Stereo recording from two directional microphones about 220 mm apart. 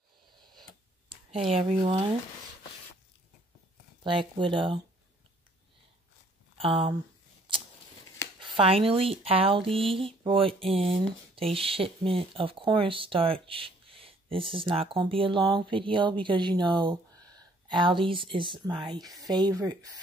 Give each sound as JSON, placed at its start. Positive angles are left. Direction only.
{"t": 0.3, "sound": "a sound", "side_deg": -20}
{"t": 1.4, "sound": "speech", "side_deg": -25}
{"t": 4.0, "sound": "speech", "side_deg": -20}
{"t": 6.6, "sound": "speech", "side_deg": -25}
{"t": 8.4, "sound": "speech", "side_deg": -25}